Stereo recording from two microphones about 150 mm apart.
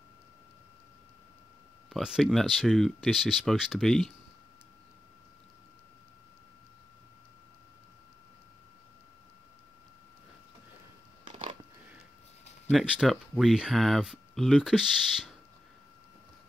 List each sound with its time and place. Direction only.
1.9 s speech: 5° right (ahead or behind)
12.7 s speech: 5° right (ahead or behind)